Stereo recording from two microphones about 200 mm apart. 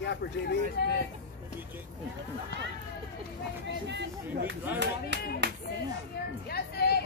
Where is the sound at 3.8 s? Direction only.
60° right (ahead or behind).